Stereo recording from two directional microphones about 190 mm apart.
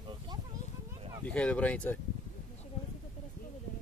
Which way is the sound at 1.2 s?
5° left (ahead or behind).